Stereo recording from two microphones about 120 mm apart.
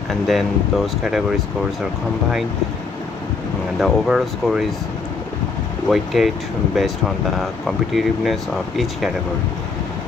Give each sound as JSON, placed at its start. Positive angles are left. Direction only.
{"t": 0.3, "sound": "speech", "side_deg": 0}
{"t": 3.8, "sound": "speech", "side_deg": 0}
{"t": 5.9, "sound": "speech", "side_deg": 0}